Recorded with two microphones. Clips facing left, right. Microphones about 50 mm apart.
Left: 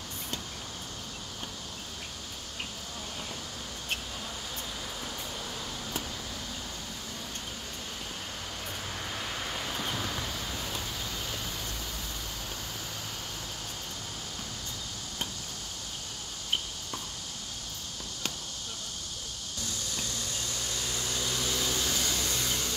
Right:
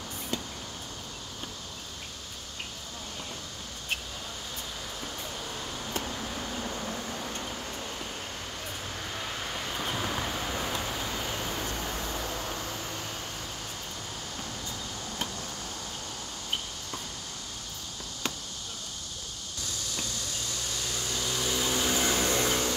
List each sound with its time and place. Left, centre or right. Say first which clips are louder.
6.0 s vehicle: right 4 dB; right
9.1 s vehicle: right 1 dB; centre; by 12.5 s right
20.7 s a sound: right 1 dB; centre; by 22.8 s right